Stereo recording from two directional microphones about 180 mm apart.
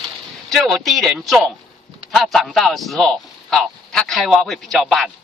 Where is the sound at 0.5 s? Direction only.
Centre (ahead or behind).